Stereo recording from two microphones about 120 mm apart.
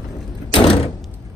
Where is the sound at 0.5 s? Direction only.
50° left (ahead or behind).